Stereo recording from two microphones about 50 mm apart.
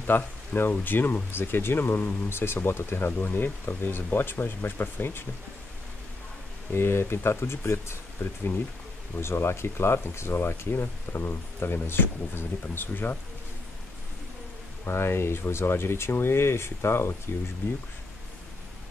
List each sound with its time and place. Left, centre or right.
0.0 s speech: left
3.1 s speech: left
6.7 s speech: left
14.9 s speech: left